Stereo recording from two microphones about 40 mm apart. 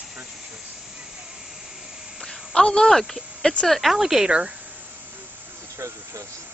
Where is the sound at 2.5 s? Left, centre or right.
Left.